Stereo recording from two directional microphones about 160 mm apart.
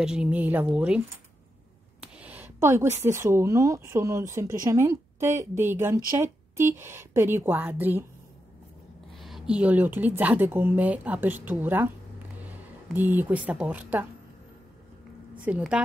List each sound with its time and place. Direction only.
0.0 s a woman's voice: 5° right (ahead or behind)
9.1 s a woman's voice: centre (ahead or behind)
12.9 s a woman's voice: 10° right (ahead or behind)
15.3 s a woman's voice: 10° right (ahead or behind)